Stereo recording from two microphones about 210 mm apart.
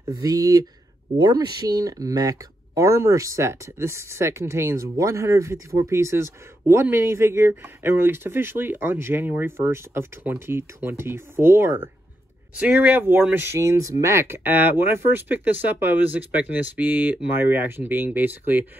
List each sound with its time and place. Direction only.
0.1 s speech: 15° right (ahead or behind)